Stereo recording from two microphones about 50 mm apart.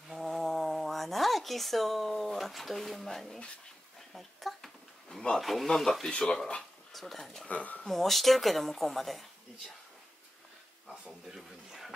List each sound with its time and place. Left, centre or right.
0.1 s speech: centre
4.1 s a sound: centre
5.4 s speech: centre
6.0 s speech: centre
7.4 s speech: left
7.8 s speech: centre
10.9 s a sound: centre